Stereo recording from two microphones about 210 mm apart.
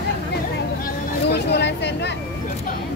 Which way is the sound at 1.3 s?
55° left (ahead or behind).